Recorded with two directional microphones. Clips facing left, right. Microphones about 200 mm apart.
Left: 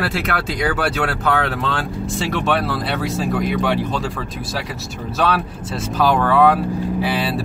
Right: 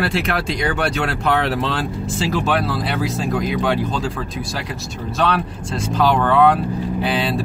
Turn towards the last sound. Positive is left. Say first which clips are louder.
# even
turn(degrees=5)  # may be behind; listen again after turning